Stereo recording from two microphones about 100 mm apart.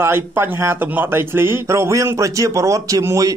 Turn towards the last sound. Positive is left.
turn(degrees=-35)  # may be behind; listen again after turning